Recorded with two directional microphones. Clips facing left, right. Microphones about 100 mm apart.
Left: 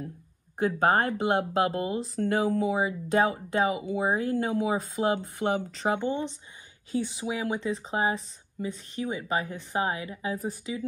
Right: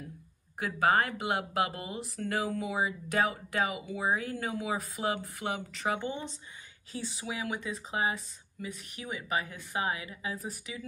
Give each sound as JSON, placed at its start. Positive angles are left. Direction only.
{"t": 0.7, "sound": "a woman's voice", "side_deg": 35}
{"t": 5.9, "sound": "a woman's voice", "side_deg": 20}
{"t": 10.3, "sound": "speech", "side_deg": 20}